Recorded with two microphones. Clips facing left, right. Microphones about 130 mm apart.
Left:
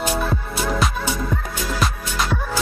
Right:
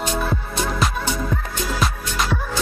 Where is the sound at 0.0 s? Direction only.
5° left (ahead or behind).